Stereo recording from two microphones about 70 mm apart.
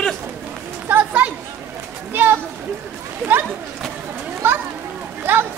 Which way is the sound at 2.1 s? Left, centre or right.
Right.